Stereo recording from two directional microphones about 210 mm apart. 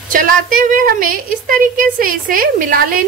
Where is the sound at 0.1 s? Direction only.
40° right (ahead or behind).